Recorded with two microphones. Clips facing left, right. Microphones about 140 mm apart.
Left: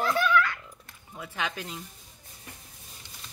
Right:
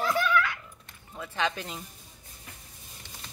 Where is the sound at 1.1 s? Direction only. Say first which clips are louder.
Right 3 dB; 10° left (ahead or behind).